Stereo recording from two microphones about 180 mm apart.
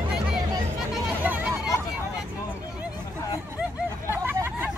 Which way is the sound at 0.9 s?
5° right (ahead or behind).